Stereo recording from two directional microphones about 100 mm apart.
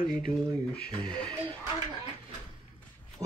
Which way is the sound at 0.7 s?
10° left (ahead or behind).